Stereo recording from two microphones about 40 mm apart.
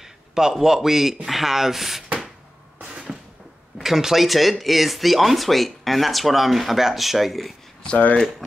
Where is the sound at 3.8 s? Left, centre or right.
Centre.